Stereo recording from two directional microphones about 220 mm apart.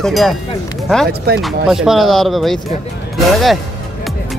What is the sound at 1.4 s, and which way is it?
Speech, centre (ahead or behind).